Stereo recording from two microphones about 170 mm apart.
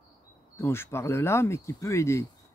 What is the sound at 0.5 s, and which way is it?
Speech, 15° left (ahead or behind).